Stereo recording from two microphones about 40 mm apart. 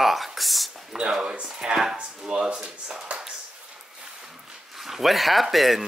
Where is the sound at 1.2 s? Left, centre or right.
Right.